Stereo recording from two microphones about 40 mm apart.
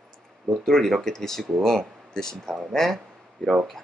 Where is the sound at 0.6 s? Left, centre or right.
Centre.